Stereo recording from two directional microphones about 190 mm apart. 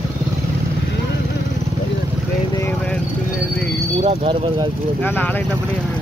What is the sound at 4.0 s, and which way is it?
Speech, 35° right (ahead or behind).